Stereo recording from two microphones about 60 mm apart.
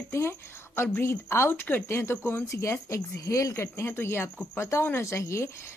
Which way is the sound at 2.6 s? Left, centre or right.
Left.